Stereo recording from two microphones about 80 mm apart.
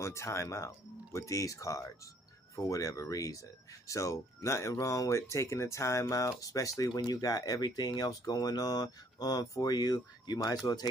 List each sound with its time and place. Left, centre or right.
0.0 s speech: left